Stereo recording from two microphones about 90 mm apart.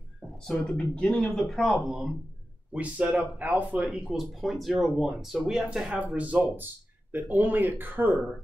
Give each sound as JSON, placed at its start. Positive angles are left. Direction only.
{"t": 0.5, "sound": "speech", "side_deg": 5}
{"t": 2.7, "sound": "speech", "side_deg": -15}
{"t": 3.7, "sound": "speech", "side_deg": -5}